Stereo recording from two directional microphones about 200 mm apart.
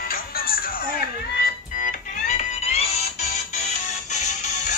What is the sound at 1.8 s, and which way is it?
Music, 35° left (ahead or behind).